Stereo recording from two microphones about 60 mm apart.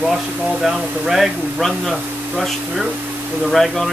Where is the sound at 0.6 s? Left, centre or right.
Centre.